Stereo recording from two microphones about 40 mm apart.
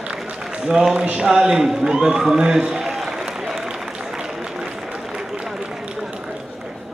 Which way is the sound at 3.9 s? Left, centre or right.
Centre.